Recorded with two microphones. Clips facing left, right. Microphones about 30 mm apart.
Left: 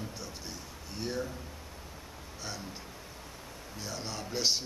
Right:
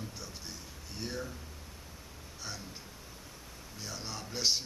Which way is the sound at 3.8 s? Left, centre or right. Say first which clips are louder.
Left 3 dB; centre.